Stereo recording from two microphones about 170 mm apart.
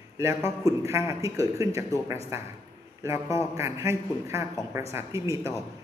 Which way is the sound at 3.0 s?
15° right (ahead or behind).